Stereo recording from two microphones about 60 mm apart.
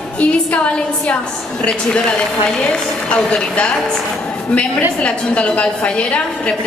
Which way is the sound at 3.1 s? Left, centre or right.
Centre.